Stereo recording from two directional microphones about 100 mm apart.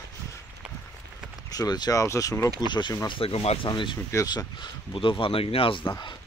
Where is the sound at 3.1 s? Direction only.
70° left (ahead or behind).